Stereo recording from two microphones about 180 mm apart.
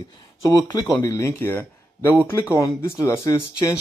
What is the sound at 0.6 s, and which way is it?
Speech, 20° left (ahead or behind).